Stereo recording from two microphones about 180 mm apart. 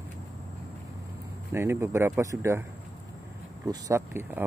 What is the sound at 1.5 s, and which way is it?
Speech, 15° right (ahead or behind).